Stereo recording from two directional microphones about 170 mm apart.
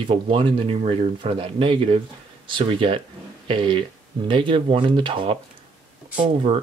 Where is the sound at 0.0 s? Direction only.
30° right (ahead or behind).